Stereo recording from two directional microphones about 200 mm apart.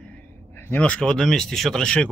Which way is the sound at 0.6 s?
10° left (ahead or behind).